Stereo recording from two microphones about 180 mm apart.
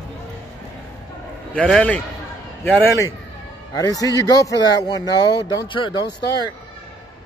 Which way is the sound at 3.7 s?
20° left (ahead or behind).